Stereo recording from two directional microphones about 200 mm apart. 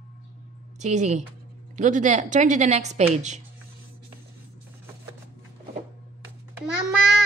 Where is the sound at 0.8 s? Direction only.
35° right (ahead or behind).